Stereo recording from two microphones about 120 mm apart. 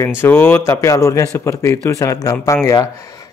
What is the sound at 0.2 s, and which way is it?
Speech, 15° left (ahead or behind).